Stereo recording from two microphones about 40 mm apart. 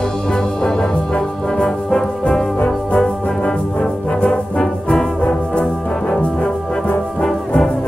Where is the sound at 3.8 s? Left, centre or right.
Left.